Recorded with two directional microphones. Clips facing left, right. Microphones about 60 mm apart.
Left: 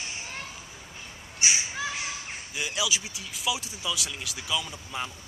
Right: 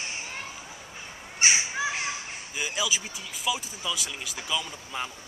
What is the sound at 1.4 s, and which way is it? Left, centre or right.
Crow, right.